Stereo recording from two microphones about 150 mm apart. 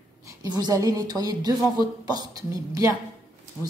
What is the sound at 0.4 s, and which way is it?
A woman's voice, 25° right (ahead or behind).